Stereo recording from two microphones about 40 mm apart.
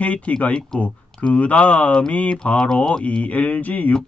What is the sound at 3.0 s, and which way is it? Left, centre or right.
Speech, left.